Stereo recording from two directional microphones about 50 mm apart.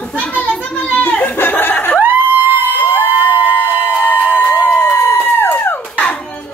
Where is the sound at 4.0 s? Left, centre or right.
Left.